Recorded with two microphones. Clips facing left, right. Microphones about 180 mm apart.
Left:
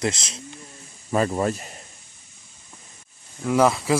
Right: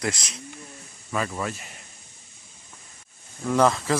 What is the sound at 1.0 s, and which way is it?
Speech, 40° left (ahead or behind).